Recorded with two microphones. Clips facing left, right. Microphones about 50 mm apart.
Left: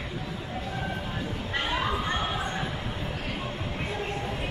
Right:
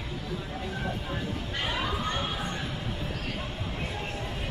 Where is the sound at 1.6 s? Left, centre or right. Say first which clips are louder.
Left 2 dB; centre.